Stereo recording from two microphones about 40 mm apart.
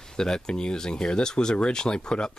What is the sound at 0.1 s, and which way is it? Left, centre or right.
Speech, centre.